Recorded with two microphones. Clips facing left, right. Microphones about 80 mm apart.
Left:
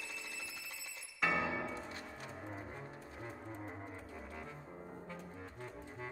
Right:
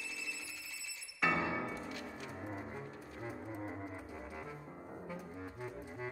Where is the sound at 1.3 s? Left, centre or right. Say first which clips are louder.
Right 1 dB; centre.